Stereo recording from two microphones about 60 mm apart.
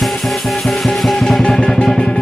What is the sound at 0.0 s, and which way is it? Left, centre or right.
Music, centre.